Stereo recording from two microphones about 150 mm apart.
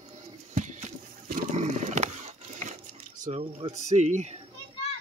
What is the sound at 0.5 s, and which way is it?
Horse, 55° right (ahead or behind).